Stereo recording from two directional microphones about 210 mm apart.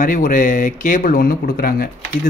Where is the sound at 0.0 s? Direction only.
40° left (ahead or behind).